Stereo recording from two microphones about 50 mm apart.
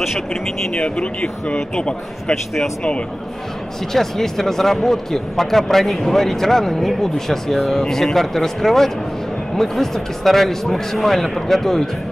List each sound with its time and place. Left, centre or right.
0.0 s speech: centre
0.8 s speech: centre
3.9 s speech: centre